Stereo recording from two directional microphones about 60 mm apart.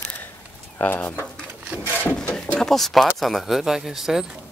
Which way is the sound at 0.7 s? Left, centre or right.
Left.